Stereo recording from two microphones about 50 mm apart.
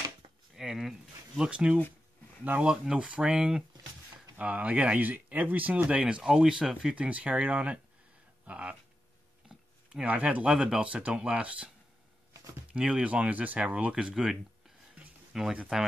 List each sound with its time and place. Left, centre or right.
0.6 s a sound: centre
1.4 s speech: right
5.9 s speech: right
6.3 s speech: centre
7.0 s speech: right
9.5 s a sound: centre
10.0 s speech: right
12.7 s speech: centre
14.1 s speech: centre